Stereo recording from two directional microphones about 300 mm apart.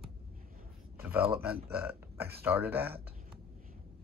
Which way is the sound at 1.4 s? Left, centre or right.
Centre.